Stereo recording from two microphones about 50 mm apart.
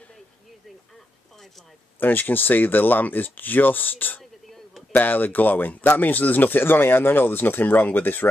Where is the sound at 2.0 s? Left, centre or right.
Left.